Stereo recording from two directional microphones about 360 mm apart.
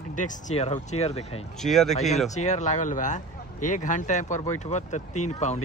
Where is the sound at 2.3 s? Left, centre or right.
Centre.